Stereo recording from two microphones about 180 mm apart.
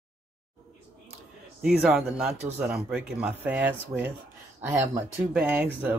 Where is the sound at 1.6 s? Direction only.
5° right (ahead or behind).